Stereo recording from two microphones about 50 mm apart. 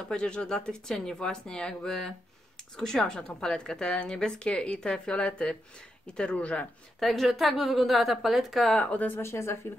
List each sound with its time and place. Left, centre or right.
0.0 s speech: centre
7.0 s a woman's voice: centre
8.7 s speech: left
9.2 s a woman's voice: left